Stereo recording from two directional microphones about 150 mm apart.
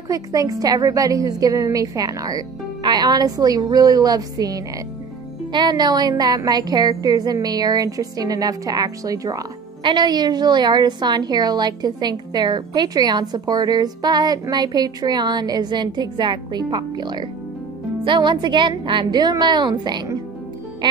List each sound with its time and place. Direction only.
0.1 s a woman's voice: 25° right (ahead or behind)